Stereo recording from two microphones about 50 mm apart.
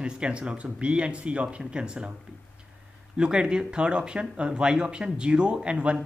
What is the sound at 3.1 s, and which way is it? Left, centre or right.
Speech, centre.